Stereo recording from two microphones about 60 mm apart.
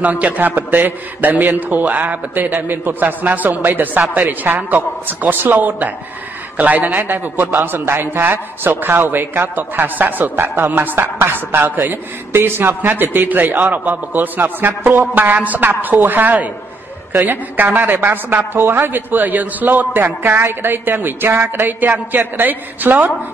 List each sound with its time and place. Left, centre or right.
0.0 s a man's voice: right